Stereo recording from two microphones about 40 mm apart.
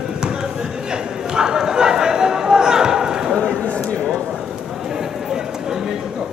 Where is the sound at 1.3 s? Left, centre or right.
Centre.